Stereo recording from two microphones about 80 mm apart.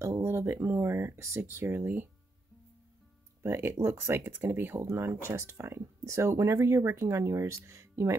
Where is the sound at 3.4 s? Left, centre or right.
Right.